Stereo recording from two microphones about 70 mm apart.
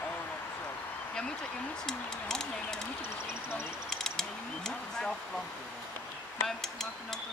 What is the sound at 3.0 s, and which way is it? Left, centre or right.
Speech, left.